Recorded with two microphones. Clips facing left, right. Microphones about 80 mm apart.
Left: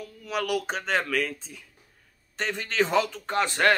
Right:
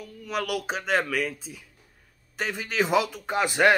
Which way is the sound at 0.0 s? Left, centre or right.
Centre.